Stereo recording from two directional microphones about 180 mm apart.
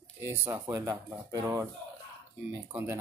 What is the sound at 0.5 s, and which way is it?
Speech, 20° right (ahead or behind).